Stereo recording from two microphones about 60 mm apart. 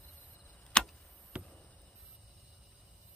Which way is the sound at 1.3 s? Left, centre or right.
Centre.